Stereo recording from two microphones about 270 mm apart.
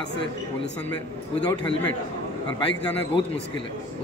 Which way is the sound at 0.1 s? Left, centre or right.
Left.